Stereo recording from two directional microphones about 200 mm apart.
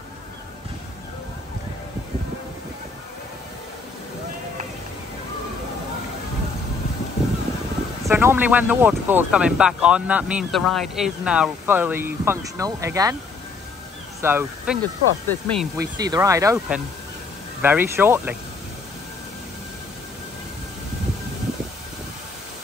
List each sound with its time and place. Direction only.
8.0 s speech: 10° right (ahead or behind)
14.2 s speech: 10° right (ahead or behind)
14.8 s speech: 5° left (ahead or behind)
16.0 s speech: 15° right (ahead or behind)
16.5 s speech: 5° right (ahead or behind)